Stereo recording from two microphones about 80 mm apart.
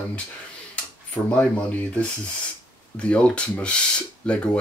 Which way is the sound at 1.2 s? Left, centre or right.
Left.